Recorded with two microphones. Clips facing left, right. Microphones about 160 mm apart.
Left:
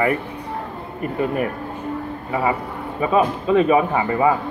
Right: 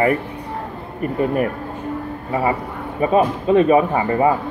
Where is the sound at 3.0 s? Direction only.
40° right (ahead or behind).